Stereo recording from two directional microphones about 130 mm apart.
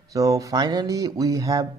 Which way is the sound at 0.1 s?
25° right (ahead or behind).